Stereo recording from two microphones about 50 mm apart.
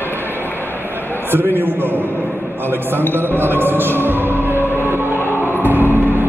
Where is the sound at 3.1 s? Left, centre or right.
Right.